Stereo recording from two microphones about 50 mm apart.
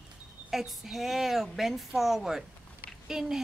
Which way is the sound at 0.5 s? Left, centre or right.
Centre.